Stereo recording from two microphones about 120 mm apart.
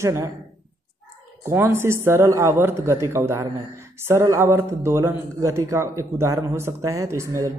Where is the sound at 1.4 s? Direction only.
20° right (ahead or behind).